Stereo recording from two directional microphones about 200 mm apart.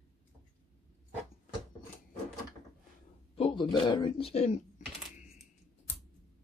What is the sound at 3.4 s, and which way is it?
Speech, 25° left (ahead or behind).